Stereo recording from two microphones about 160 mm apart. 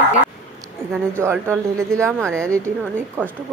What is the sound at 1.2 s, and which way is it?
Speech, 15° right (ahead or behind).